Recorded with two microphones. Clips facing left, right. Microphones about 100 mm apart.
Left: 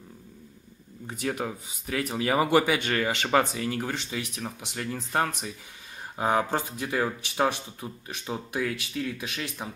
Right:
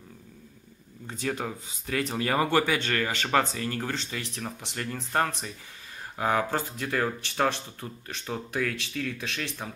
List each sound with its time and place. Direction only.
1.0 s speech: 15° left (ahead or behind)